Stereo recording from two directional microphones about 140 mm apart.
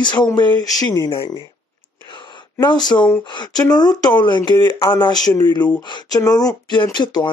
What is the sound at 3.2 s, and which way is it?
Speech, 30° left (ahead or behind).